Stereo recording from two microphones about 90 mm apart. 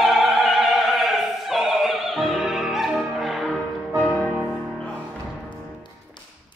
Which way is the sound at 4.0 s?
20° left (ahead or behind).